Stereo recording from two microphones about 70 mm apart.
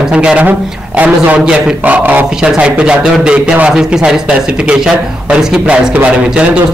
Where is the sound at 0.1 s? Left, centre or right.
Centre.